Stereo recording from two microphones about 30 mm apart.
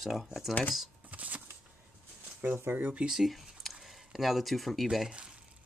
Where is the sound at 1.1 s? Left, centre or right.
Right.